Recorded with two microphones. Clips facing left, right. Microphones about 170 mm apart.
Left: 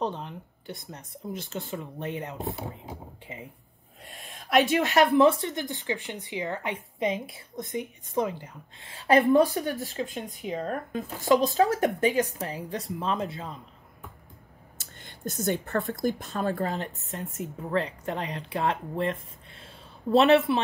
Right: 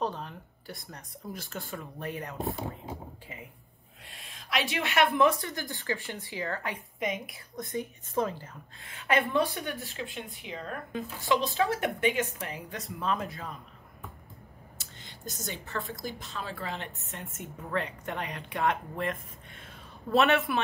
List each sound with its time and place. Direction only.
0.0 s speech: 20° left (ahead or behind)
4.2 s speech: 50° left (ahead or behind); by 8.8 s 15° left (ahead or behind)
8.8 s a woman's voice: 30° left (ahead or behind)
14.8 s a sound: 55° left (ahead or behind)
15.9 s a woman's voice: 55° left (ahead or behind); by 19.1 s 30° left (ahead or behind)
19.6 s a sound: 30° left (ahead or behind)